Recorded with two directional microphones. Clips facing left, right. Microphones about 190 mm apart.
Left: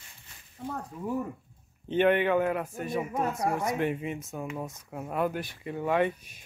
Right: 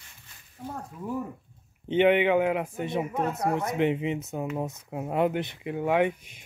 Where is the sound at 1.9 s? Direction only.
15° right (ahead or behind).